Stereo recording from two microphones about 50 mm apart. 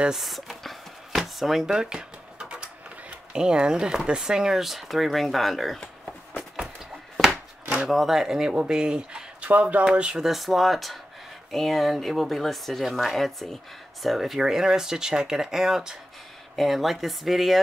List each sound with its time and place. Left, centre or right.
0.1 s chopping: centre
3.3 s speech: centre
7.2 s chopping: centre
7.9 s speech: centre
9.5 s speech: right
9.8 s speech: centre
10.2 s speech: centre
16.5 s speech: centre